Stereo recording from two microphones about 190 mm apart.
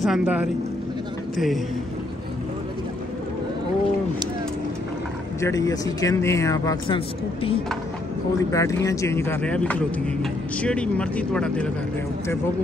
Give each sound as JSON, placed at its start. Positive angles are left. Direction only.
{"t": 0.0, "sound": "a man's voice", "side_deg": -5}
{"t": 5.4, "sound": "speech", "side_deg": 15}
{"t": 8.5, "sound": "speech", "side_deg": 15}